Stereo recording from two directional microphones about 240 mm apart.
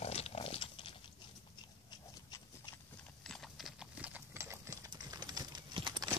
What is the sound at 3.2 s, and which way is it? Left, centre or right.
Clip-clop, centre.